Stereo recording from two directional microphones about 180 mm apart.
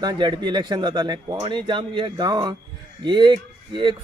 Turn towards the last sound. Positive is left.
turn(degrees=-25)  # may be behind; listen again after turning